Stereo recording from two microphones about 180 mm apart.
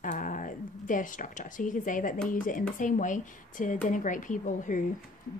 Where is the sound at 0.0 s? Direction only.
45° left (ahead or behind).